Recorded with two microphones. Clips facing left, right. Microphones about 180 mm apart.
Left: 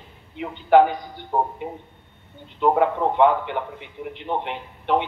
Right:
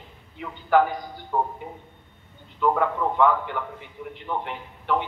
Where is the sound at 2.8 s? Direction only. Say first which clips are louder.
Left 5 dB; 25° left (ahead or behind).